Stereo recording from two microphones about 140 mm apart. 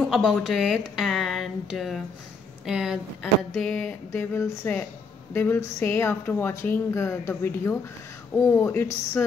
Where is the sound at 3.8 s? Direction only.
15° left (ahead or behind).